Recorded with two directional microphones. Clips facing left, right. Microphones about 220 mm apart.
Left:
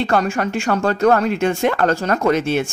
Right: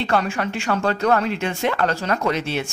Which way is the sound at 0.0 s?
45° left (ahead or behind).